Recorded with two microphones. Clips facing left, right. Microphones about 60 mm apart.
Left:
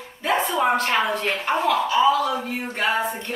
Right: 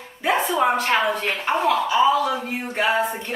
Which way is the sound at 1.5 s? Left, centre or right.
Centre.